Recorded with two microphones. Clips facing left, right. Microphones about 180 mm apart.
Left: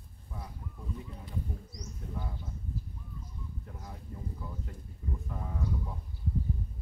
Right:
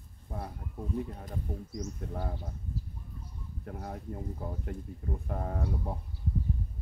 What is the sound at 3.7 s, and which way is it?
Speech, 65° right (ahead or behind).